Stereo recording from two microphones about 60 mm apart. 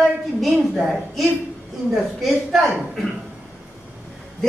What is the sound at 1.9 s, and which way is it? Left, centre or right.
Speech, centre.